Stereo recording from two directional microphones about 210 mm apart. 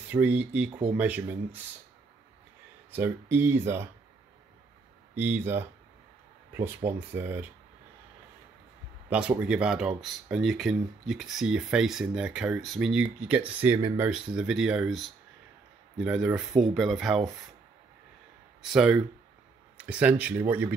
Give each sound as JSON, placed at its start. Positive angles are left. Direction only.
{"t": 0.1, "sound": "speech", "side_deg": -5}
{"t": 0.7, "sound": "speech", "side_deg": -25}
{"t": 0.9, "sound": "speech", "side_deg": -5}
{"t": 2.9, "sound": "speech", "side_deg": -10}
{"t": 5.1, "sound": "speech", "side_deg": -10}
{"t": 9.1, "sound": "speech", "side_deg": -5}
{"t": 18.6, "sound": "speech", "side_deg": -5}